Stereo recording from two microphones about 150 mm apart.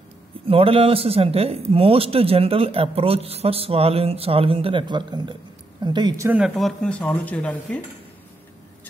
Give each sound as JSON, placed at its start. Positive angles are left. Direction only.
{"t": 0.5, "sound": "a man's voice", "side_deg": -40}
{"t": 6.5, "sound": "speech", "side_deg": 5}